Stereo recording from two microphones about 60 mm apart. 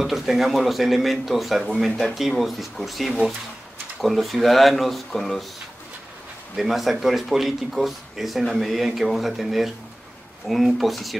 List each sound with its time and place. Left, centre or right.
0.0 s speech: centre
6.5 s speech: centre